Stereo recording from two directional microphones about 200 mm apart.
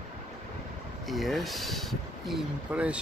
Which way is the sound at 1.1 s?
Centre (ahead or behind).